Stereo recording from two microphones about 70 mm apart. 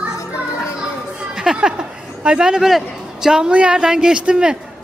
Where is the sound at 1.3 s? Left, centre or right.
Centre.